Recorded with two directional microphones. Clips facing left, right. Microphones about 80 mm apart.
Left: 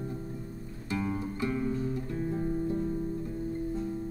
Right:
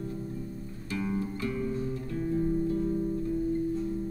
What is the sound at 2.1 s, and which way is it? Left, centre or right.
Music, left.